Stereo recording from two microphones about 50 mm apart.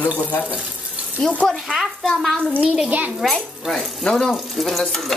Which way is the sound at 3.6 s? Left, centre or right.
Centre.